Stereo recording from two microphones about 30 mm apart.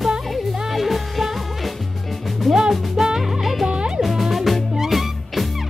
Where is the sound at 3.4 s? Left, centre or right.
Centre.